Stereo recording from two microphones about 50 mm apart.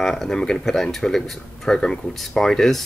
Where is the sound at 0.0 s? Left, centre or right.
Centre.